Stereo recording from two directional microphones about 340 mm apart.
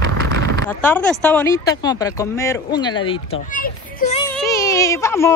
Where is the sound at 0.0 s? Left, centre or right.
Right.